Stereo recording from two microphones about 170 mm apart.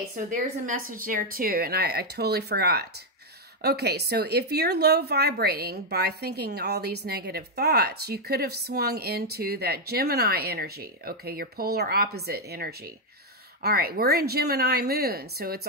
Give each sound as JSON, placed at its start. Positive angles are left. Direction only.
{"t": 0.3, "sound": "speech", "side_deg": -55}